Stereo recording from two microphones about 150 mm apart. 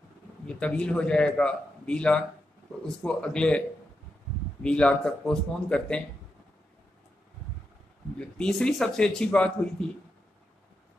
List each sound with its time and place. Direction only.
0.6 s speech: 5° left (ahead or behind)
4.6 s speech: 5° left (ahead or behind)
8.2 s speech: 5° left (ahead or behind)